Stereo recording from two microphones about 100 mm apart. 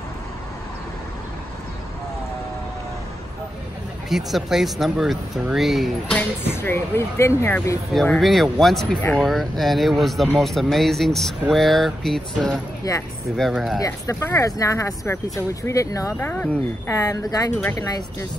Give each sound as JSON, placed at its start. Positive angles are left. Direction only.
{"t": 4.1, "sound": "speech", "side_deg": 0}
{"t": 6.4, "sound": "speech", "side_deg": 20}
{"t": 7.9, "sound": "speech", "side_deg": 5}
{"t": 12.9, "sound": "speech", "side_deg": 40}
{"t": 13.4, "sound": "speech", "side_deg": 0}
{"t": 13.7, "sound": "speech", "side_deg": 30}
{"t": 16.2, "sound": "speech", "side_deg": 20}
{"t": 16.9, "sound": "speech", "side_deg": 35}